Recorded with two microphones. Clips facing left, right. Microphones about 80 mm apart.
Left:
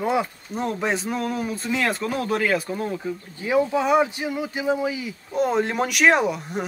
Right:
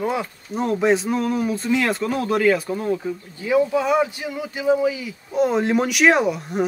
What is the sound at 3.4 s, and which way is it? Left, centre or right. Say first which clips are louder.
Speech: right 2 dB; left.